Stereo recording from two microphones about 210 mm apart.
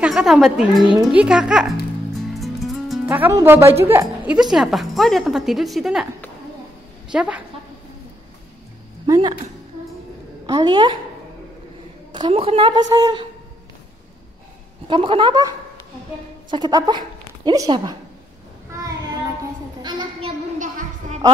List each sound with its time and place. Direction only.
0.0 s a woman's voice: centre (ahead or behind)
7.1 s a woman's voice: 5° right (ahead or behind)
9.0 s speech: 20° right (ahead or behind)
10.4 s a woman's voice: 20° right (ahead or behind)
12.1 s a woman's voice: 25° right (ahead or behind)
14.9 s a woman's voice: 25° right (ahead or behind)
19.8 s a child's voice: 20° right (ahead or behind)
20.5 s a sound: 35° right (ahead or behind)